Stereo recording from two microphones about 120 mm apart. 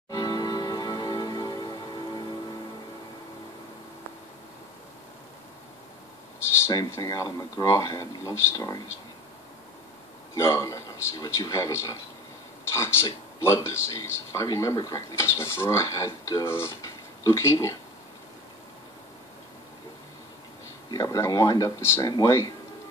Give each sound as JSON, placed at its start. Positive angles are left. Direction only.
{"t": 0.1, "sound": "music", "side_deg": 35}
{"t": 7.0, "sound": "speech", "side_deg": 30}
{"t": 10.3, "sound": "a man's voice", "side_deg": 25}
{"t": 20.9, "sound": "speech", "side_deg": 30}